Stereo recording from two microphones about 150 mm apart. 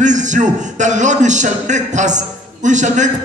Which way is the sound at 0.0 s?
55° right (ahead or behind).